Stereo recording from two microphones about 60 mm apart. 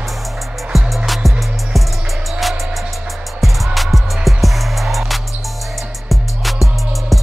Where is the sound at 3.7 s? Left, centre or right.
Centre.